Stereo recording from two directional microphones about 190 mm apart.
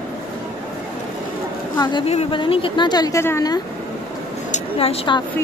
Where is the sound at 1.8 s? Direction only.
25° left (ahead or behind).